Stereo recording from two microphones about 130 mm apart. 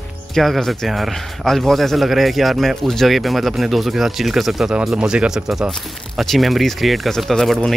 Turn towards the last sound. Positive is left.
turn(degrees=0)  # may be behind; listen again after turning